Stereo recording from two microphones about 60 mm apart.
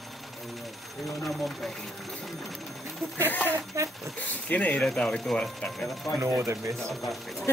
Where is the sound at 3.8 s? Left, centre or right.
Right.